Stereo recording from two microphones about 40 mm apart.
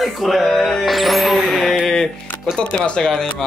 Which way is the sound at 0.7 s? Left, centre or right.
Centre.